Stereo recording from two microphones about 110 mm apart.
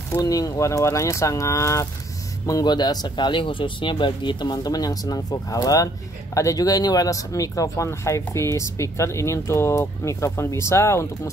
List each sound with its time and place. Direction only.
0.2 s speech: 35° left (ahead or behind)